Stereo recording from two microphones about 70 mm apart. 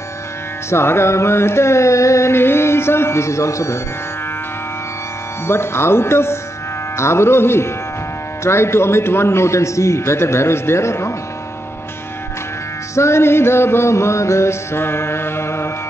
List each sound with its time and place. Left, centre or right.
0.7 s music: left
5.5 s music: left
12.9 s music: left